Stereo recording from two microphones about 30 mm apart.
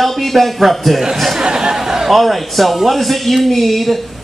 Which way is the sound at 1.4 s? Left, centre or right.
Right.